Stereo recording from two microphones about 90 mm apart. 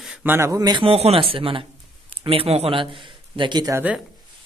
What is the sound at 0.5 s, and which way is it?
Speech, 45° right (ahead or behind).